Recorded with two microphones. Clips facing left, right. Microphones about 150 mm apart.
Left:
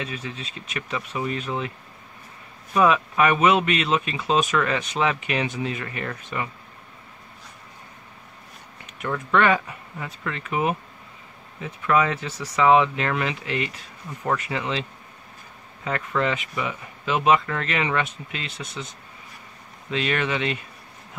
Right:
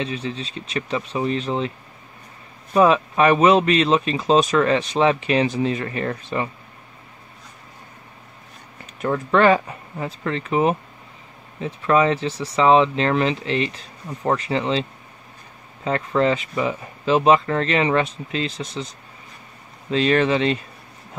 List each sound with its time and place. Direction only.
0.0 s speech: 30° right (ahead or behind)
2.7 s speech: 35° right (ahead or behind)
9.0 s speech: 35° right (ahead or behind)